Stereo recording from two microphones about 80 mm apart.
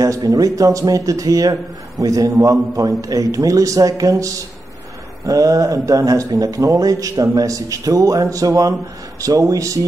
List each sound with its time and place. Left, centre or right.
0.0 s speech: right